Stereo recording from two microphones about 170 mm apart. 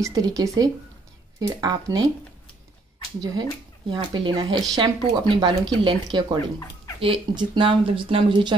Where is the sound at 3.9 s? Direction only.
30° right (ahead or behind).